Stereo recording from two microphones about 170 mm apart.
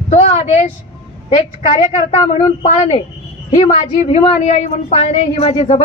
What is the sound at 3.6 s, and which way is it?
A woman's voice, 45° left (ahead or behind).